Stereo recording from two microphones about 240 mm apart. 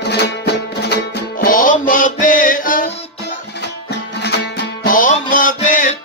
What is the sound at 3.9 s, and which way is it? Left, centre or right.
Music, left.